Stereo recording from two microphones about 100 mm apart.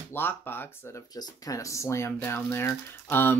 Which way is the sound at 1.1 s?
40° left (ahead or behind).